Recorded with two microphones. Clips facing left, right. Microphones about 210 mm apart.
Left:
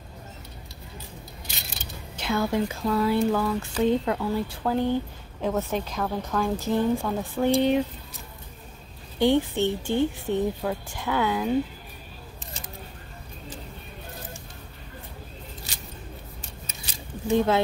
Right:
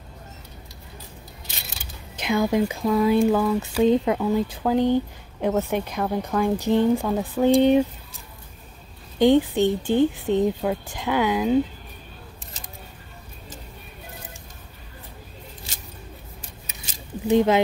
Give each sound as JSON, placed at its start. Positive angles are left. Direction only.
{"t": 2.1, "sound": "speech", "side_deg": -15}
{"t": 9.2, "sound": "speech", "side_deg": -15}
{"t": 17.3, "sound": "speech", "side_deg": -20}